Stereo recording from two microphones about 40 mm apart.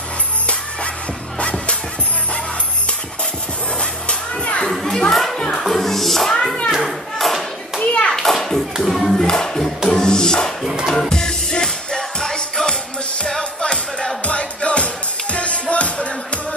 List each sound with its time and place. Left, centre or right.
4.1 s children playing: left
4.6 s children playing: centre
5.5 s speech: centre
6.7 s clapping: centre
7.8 s children playing: left
8.1 s children playing: centre
8.8 s music: centre; by 16.1 s left